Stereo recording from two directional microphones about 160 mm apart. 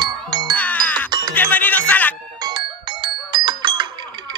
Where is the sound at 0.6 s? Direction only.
10° left (ahead or behind).